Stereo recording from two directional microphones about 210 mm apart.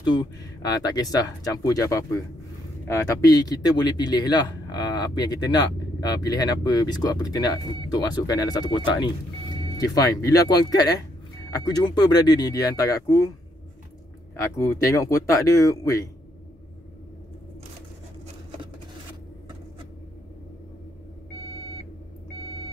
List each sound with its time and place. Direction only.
0.0 s speech: 20° left (ahead or behind)
14.4 s speech: 15° left (ahead or behind)